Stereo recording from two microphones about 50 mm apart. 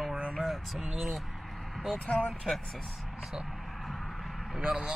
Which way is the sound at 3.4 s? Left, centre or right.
Centre.